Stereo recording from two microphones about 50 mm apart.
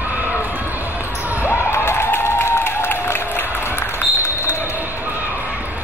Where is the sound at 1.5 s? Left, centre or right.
Left.